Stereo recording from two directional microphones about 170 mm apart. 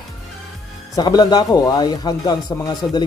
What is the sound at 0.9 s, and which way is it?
Speech, 25° left (ahead or behind).